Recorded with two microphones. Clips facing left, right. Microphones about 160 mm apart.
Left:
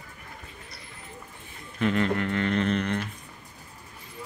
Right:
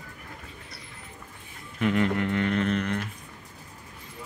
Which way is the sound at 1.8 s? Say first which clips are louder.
Even; 10° right (ahead or behind).